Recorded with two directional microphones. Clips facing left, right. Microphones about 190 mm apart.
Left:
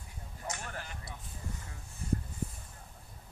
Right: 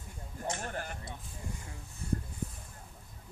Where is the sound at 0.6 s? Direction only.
45° right (ahead or behind).